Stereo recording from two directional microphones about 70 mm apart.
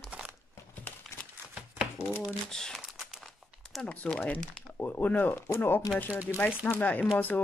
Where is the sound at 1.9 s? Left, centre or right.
Left.